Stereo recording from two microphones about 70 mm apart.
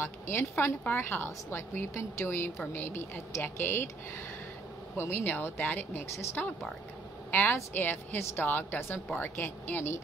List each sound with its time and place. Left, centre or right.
0.0 s a woman's voice: left
4.9 s a woman's voice: left
7.2 s a woman's voice: left